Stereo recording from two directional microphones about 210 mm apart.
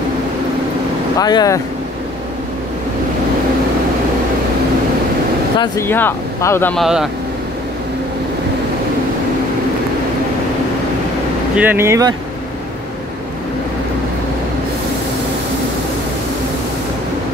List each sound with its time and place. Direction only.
1.1 s speech: 20° left (ahead or behind)
5.6 s speech: 10° left (ahead or behind)
11.5 s speech: 10° right (ahead or behind)